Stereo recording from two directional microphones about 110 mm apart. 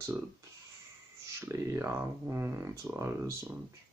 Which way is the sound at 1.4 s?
25° right (ahead or behind).